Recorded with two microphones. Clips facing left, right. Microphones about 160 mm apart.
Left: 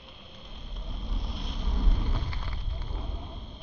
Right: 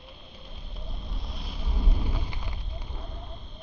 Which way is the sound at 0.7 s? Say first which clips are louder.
Left 2 dB; centre (ahead or behind).